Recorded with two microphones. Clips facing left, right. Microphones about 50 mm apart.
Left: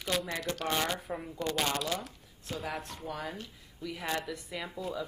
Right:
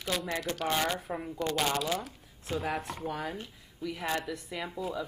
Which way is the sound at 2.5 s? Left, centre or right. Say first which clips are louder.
Right 5 dB; right.